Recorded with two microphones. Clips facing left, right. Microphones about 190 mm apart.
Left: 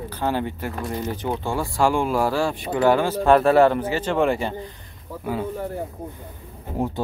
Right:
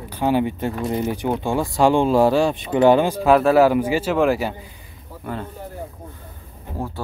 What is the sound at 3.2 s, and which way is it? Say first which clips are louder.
Speech: even; centre (ahead or behind).